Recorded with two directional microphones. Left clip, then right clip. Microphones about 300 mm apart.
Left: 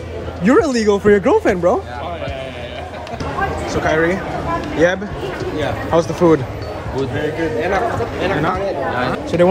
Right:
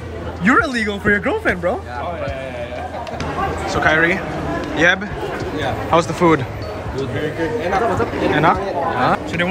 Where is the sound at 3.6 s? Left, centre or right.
Centre.